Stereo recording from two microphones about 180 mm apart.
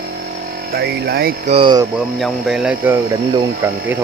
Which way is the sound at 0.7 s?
60° right (ahead or behind).